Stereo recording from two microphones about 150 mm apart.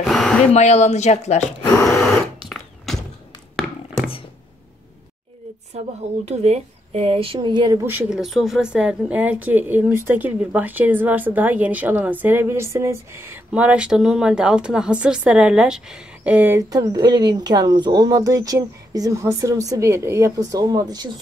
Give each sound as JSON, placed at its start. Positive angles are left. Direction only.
{"t": 0.0, "sound": "a sound", "side_deg": 0}
{"t": 0.5, "sound": "speech", "side_deg": 50}
{"t": 2.0, "sound": "a sound", "side_deg": 0}
{"t": 3.6, "sound": "tap", "side_deg": -5}
{"t": 6.2, "sound": "speech", "side_deg": -45}
{"t": 7.8, "sound": "a woman's voice", "side_deg": -15}
{"t": 8.1, "sound": "a woman's voice", "side_deg": 0}
{"t": 16.7, "sound": "speech", "side_deg": -25}